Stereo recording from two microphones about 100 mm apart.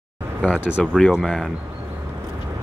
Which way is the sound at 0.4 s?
10° right (ahead or behind).